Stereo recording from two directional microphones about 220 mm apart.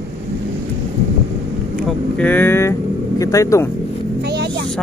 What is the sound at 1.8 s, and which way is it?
Speech, 5° left (ahead or behind).